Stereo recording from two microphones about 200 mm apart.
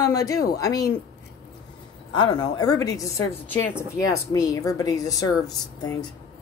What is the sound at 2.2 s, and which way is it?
A woman's voice, 20° left (ahead or behind).